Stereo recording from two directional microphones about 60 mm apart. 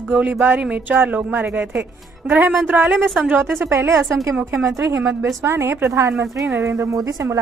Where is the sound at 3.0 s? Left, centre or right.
Right.